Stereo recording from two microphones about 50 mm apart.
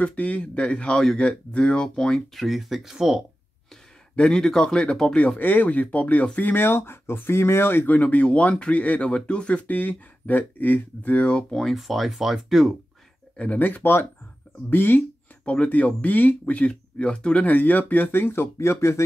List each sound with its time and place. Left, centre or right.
0.0 s speech: left; by 2.2 s centre
2.3 s speech: centre
4.1 s speech: centre
5.4 s speech: left
6.5 s speech: left
11.7 s speech: centre
13.6 s speech: left
15.4 s speech: left
17.5 s speech: left
18.1 s speech: left